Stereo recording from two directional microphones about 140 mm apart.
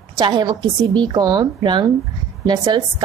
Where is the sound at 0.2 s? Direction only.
30° right (ahead or behind).